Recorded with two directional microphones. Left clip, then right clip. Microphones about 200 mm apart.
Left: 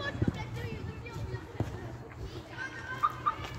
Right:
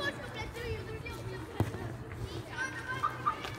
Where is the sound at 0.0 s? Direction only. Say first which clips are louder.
Even; 50° right (ahead or behind).